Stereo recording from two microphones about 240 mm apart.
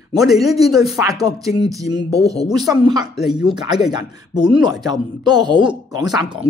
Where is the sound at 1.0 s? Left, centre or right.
Centre.